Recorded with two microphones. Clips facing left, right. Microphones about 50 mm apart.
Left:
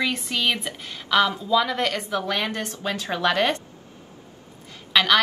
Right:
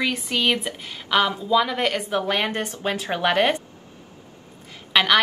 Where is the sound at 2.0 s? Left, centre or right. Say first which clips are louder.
Right 2 dB; right.